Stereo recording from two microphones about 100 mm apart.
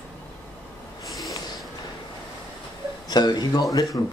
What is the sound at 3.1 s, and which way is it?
Speech, 45° left (ahead or behind).